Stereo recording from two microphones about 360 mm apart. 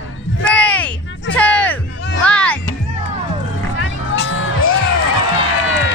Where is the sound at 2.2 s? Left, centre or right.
Centre.